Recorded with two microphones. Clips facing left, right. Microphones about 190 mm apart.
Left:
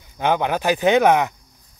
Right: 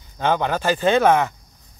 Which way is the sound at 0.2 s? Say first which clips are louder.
Left 1 dB; 15° left (ahead or behind).